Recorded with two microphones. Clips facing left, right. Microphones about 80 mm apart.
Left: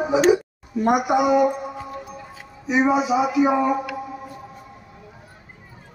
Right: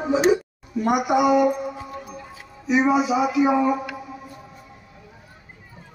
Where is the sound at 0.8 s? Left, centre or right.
Left.